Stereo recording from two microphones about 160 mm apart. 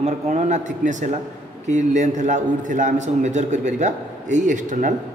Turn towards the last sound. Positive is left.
turn(degrees=-50)  # may be behind; listen again after turning